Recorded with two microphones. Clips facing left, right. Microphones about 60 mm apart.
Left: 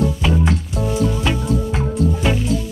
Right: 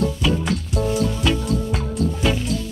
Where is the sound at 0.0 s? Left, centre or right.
Left.